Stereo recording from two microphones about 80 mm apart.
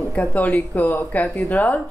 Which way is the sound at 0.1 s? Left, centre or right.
Centre.